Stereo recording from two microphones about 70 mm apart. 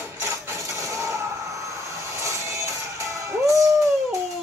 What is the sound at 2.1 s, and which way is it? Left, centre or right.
Music, right.